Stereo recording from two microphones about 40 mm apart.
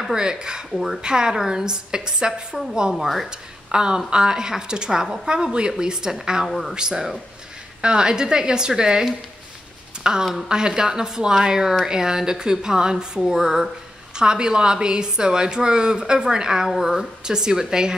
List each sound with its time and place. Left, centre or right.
0.1 s speech: centre
0.7 s speech: centre
1.0 s a woman's voice: centre
2.9 s speech: centre
3.3 s a woman's voice: right
5.0 s speech: centre
5.3 s a woman's voice: right
6.4 s speech: centre
6.7 s a woman's voice: centre
14.1 s a woman's voice: centre
17.2 s speech: centre